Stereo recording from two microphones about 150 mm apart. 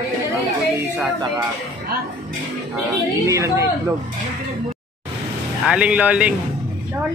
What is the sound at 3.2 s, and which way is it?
Speech, 20° right (ahead or behind).